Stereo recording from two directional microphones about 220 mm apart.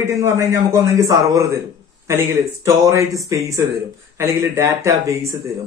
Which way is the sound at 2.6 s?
15° right (ahead or behind).